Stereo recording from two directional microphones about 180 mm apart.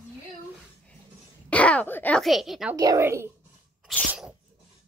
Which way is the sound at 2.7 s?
20° right (ahead or behind).